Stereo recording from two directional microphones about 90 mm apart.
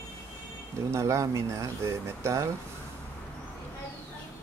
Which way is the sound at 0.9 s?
35° right (ahead or behind).